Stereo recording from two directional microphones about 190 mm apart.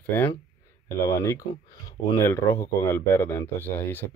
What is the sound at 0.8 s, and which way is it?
Speech, 15° left (ahead or behind).